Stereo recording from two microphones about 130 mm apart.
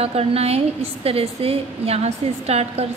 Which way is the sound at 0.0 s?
50° right (ahead or behind).